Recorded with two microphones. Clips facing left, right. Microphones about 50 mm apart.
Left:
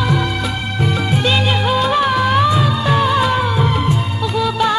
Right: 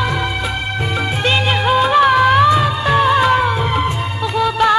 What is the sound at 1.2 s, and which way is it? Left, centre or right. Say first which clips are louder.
Music: right 3 dB; right.